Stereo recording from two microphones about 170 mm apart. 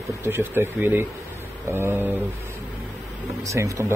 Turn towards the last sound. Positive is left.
turn(degrees=-20)  # may be behind; listen again after turning